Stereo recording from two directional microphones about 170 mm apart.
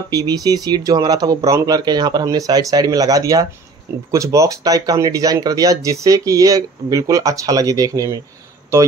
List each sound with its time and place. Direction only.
0.1 s speech: 20° right (ahead or behind)